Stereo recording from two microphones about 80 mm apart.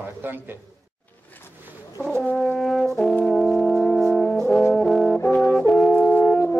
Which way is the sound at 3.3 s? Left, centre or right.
Centre.